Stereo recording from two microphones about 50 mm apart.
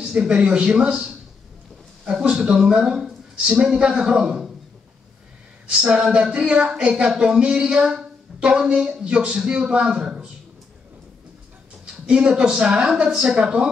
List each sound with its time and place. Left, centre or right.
0.1 s speech: right
5.7 s speech: centre
11.8 s a woman's voice: centre